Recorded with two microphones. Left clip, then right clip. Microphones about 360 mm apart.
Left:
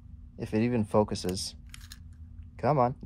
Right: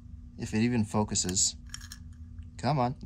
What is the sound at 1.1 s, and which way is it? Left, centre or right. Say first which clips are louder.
Speech: right 4 dB; right.